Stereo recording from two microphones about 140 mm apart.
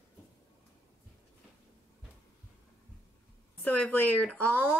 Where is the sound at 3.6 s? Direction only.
10° left (ahead or behind).